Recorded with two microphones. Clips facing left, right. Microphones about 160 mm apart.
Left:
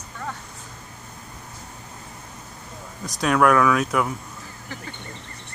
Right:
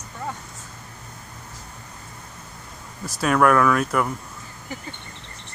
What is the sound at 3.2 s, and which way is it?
Speech, centre (ahead or behind).